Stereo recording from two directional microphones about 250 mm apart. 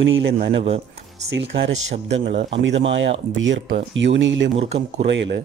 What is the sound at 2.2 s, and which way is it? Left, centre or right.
Speech, right.